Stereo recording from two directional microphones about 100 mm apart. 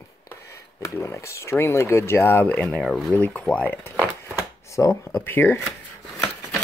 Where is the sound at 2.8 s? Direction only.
Centre (ahead or behind).